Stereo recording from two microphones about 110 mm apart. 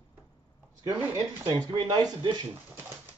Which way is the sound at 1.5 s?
35° right (ahead or behind).